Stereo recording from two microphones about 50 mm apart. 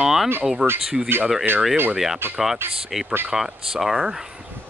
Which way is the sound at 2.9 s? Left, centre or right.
Centre.